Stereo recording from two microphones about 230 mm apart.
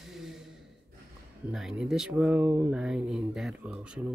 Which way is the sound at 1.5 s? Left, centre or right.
Centre.